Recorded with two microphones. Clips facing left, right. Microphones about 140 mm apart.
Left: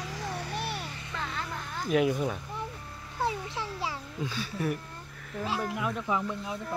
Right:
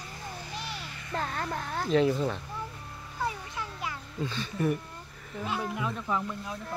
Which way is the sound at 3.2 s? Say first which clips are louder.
Left 3 dB; 30° left (ahead or behind).